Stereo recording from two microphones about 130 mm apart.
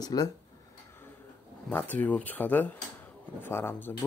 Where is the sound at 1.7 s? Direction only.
15° left (ahead or behind).